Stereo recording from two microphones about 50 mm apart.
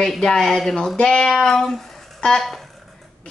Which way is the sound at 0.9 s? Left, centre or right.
Centre.